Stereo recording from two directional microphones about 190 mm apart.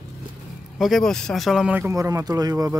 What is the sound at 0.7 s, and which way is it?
Speech, centre (ahead or behind).